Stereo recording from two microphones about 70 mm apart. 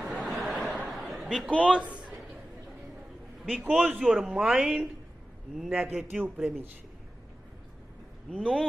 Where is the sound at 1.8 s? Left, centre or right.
Right.